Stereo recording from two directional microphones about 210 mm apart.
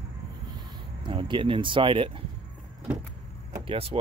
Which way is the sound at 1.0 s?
25° right (ahead or behind).